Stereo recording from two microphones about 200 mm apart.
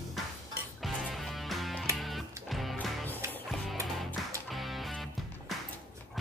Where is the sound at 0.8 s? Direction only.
Centre (ahead or behind).